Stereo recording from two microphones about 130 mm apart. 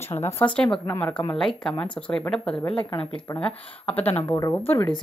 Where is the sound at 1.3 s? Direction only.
5° left (ahead or behind).